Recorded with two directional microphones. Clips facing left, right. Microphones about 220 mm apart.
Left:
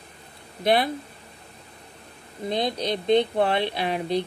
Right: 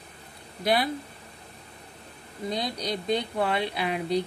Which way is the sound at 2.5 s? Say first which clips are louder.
Left 5 dB; 25° left (ahead or behind).